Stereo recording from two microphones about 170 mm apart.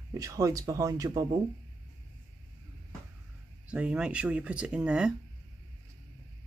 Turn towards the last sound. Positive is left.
turn(degrees=-5)  # may be behind; listen again after turning